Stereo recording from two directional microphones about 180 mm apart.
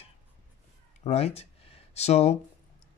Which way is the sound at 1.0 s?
35° left (ahead or behind).